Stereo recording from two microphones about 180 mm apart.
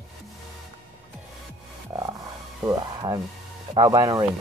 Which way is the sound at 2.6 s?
20° right (ahead or behind).